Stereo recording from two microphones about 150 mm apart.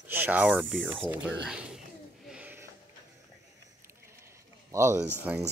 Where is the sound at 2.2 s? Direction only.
10° right (ahead or behind).